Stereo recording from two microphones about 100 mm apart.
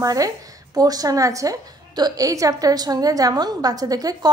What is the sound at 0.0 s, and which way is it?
A woman's voice, 35° right (ahead or behind).